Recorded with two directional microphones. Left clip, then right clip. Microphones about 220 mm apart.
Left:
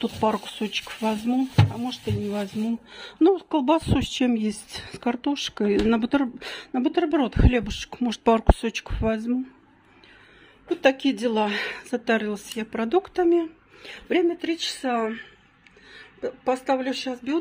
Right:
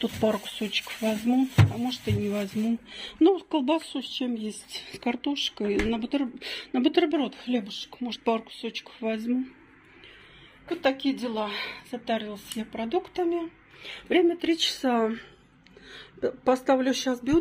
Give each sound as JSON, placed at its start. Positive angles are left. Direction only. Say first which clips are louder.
{"t": 0.2, "sound": "speech", "louder": "left 3 dB", "side_deg": 10}
{"t": 3.9, "sound": "speech", "louder": "left 7 dB", "side_deg": 30}
{"t": 6.7, "sound": "speech", "louder": "even", "side_deg": 5}
{"t": 7.1, "sound": "speech", "louder": "left 5 dB", "side_deg": 25}
{"t": 9.0, "sound": "speech", "louder": "left 4 dB", "side_deg": 15}
{"t": 11.1, "sound": "speech", "louder": "left 6 dB", "side_deg": 35}
{"t": 14.0, "sound": "a woman's voice", "louder": "even", "side_deg": 0}